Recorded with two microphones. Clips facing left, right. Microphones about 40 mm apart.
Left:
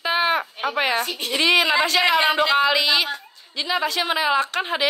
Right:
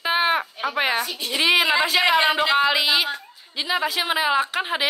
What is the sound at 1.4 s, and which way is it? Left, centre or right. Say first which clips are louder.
Speech: left 1 dB; centre.